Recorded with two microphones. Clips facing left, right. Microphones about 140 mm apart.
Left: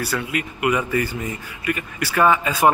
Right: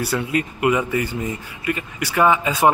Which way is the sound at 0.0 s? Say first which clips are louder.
Right 3 dB; 30° right (ahead or behind).